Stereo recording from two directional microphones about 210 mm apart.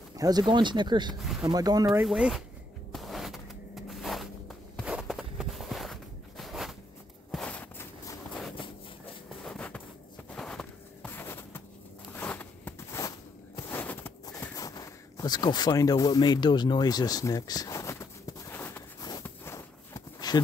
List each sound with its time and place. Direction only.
0.1 s speech: 20° right (ahead or behind)
1.2 s speech: centre (ahead or behind)
1.5 s speech: 20° right (ahead or behind)
1.9 s speech: centre (ahead or behind)
2.9 s a sound: centre (ahead or behind)
8.3 s a sound: centre (ahead or behind)